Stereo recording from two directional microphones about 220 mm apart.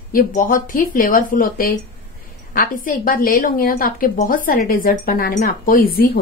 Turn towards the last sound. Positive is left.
turn(degrees=40)  # may be behind; listen again after turning